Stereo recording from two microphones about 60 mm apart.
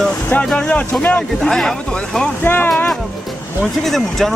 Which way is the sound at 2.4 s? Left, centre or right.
Left.